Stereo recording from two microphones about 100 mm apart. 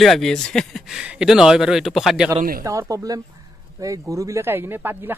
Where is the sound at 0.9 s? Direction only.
10° right (ahead or behind).